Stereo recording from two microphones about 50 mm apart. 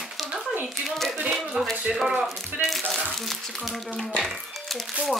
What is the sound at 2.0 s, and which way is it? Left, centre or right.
Speech, centre.